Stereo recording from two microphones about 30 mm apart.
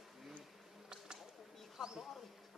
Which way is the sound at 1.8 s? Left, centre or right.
Centre.